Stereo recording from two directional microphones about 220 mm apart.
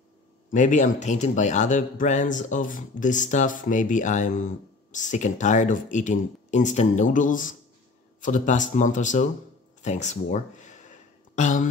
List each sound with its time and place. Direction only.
0.5 s a man's voice: 35° left (ahead or behind)